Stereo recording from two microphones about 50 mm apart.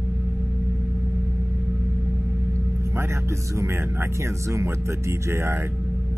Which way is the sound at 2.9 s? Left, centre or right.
Right.